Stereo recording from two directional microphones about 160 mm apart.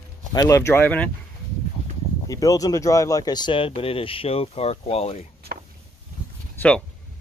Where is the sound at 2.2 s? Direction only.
20° left (ahead or behind); by 5.2 s 40° left (ahead or behind).